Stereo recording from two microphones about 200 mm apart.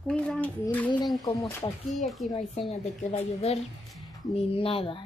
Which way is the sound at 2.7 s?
30° left (ahead or behind).